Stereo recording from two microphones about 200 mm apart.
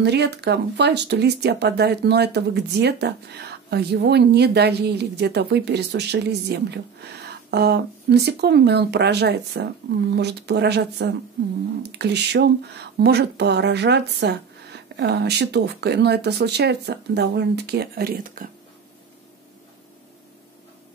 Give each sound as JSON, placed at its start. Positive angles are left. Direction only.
{"t": 0.0, "sound": "speech", "side_deg": -55}